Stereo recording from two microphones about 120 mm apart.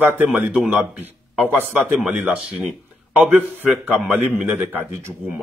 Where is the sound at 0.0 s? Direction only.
15° right (ahead or behind).